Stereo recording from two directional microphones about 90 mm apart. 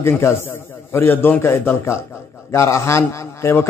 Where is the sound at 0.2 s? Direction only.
25° left (ahead or behind).